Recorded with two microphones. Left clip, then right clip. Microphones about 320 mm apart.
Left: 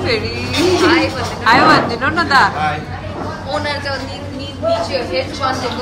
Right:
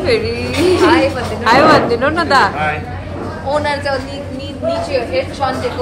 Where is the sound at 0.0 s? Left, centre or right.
Centre.